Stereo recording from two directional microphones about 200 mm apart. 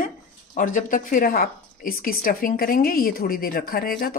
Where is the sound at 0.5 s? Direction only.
40° left (ahead or behind).